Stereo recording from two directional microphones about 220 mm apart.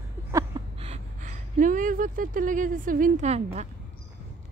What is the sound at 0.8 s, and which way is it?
Speech, 30° right (ahead or behind).